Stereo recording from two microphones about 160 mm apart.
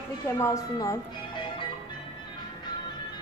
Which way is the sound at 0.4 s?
20° left (ahead or behind).